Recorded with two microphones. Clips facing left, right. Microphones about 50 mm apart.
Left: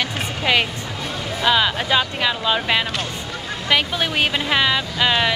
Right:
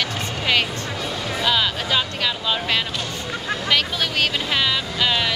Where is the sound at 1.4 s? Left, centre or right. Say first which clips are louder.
Left 4 dB; centre.